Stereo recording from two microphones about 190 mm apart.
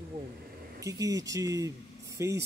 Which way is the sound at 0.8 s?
15° right (ahead or behind).